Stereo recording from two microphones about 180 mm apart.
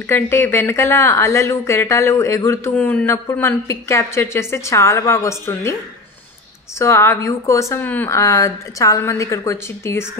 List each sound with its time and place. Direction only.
0.0 s speech: 15° left (ahead or behind)
6.8 s speech: 15° left (ahead or behind)